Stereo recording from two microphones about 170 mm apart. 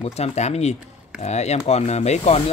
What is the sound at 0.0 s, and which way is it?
Speech, 40° left (ahead or behind).